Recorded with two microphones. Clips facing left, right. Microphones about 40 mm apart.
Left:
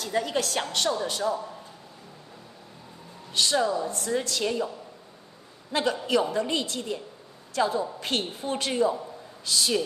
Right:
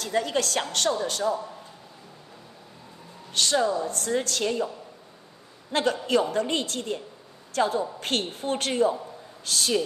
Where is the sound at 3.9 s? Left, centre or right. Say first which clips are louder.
Right 1 dB; right.